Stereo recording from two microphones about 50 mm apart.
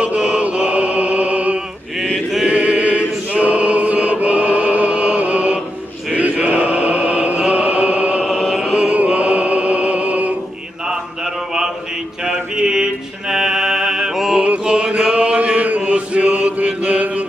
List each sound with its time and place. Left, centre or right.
0.0 s music: right
2.4 s choir: right
8.3 s music: centre
8.7 s music: right
12.3 s mantra: centre
14.3 s mantra: right
14.6 s chant: right